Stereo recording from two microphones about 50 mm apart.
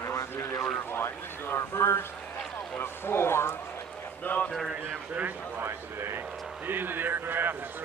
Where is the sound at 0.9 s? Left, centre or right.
Left.